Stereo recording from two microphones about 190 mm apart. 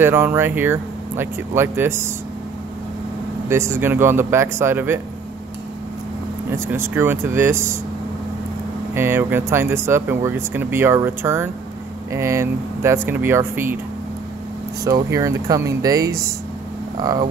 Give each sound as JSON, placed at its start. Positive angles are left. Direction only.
{"t": 0.0, "sound": "speech", "side_deg": -10}
{"t": 3.4, "sound": "speech", "side_deg": -15}
{"t": 6.5, "sound": "speech", "side_deg": -10}
{"t": 8.9, "sound": "speech", "side_deg": -10}
{"t": 14.9, "sound": "speech", "side_deg": -15}